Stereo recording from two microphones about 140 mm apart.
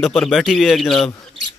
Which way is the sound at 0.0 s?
Centre (ahead or behind).